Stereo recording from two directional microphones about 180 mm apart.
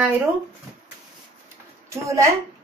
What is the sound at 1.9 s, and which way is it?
Speech, 15° right (ahead or behind).